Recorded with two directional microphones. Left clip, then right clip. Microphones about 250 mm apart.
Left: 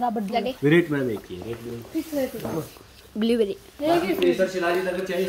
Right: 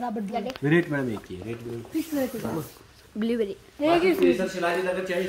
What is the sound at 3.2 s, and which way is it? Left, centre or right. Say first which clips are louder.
Speech: left 5 dB; centre.